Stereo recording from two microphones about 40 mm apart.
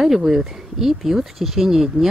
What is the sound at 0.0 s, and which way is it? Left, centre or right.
A woman's voice, centre.